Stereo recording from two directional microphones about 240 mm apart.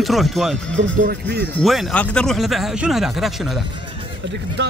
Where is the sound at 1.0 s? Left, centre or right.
Right.